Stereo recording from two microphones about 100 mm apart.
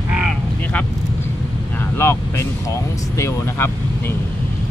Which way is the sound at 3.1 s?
25° left (ahead or behind).